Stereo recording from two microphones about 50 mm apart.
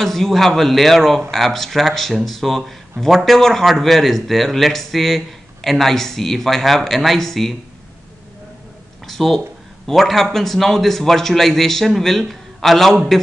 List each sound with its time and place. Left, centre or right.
0.0 s speech: centre
9.0 s a sound: centre
9.8 s speech: centre